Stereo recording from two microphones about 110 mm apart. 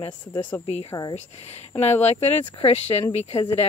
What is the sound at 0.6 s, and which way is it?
Speech, 75° left (ahead or behind).